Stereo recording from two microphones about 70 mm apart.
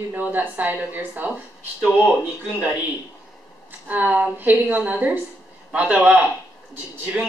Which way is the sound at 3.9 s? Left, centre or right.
Right.